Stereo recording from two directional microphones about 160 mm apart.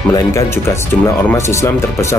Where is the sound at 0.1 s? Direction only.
20° left (ahead or behind).